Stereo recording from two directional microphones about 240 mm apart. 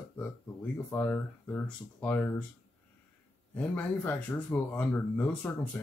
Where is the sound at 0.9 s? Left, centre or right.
Centre.